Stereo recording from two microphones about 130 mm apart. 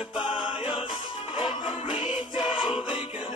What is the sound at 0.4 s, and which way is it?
Music, 40° left (ahead or behind).